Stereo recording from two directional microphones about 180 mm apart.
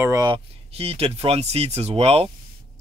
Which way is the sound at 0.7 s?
35° right (ahead or behind).